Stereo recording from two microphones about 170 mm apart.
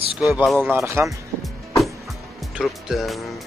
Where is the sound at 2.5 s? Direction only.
Centre (ahead or behind).